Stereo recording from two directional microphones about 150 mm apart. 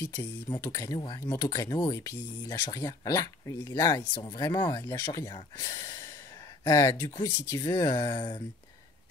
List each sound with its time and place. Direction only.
0.6 s speech: 20° left (ahead or behind)
0.9 s speech: 35° left (ahead or behind)
1.2 s speech: 20° left (ahead or behind)
4.8 s speech: 20° left (ahead or behind)